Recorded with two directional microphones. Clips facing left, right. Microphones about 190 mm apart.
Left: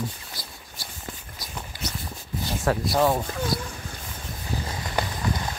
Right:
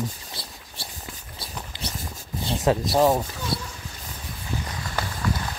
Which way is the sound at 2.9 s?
20° right (ahead or behind).